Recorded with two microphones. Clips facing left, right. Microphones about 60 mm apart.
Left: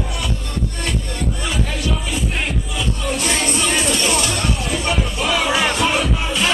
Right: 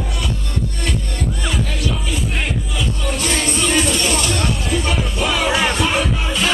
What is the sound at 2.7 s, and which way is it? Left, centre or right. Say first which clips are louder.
Music: left 1 dB; centre.